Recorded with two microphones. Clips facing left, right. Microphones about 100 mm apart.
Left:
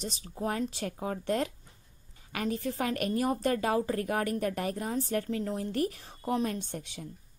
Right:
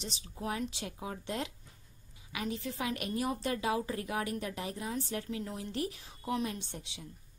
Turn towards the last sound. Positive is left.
turn(degrees=50)  # may be behind; listen again after turning